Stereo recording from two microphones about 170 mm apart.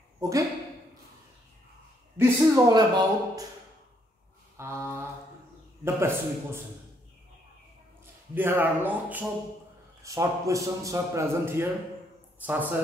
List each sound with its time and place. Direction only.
0.2 s speech: 20° right (ahead or behind)
2.1 s a man's voice: 15° right (ahead or behind)
4.6 s a sound: 15° right (ahead or behind)
5.9 s a man's voice: 15° right (ahead or behind)
8.0 s a man's voice: 10° right (ahead or behind)